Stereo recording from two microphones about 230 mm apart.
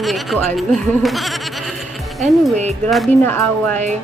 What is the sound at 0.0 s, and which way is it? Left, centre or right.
A woman's voice, centre.